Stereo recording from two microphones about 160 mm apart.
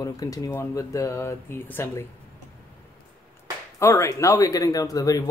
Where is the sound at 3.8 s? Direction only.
20° left (ahead or behind).